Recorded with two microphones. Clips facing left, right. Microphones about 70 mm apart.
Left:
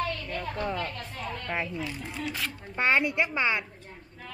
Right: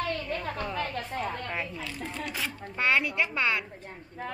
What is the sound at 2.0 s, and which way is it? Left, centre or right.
A woman's voice, centre.